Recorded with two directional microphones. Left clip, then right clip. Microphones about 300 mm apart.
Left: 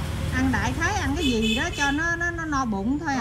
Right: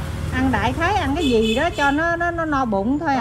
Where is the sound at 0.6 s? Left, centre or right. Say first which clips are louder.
Right 6 dB; centre.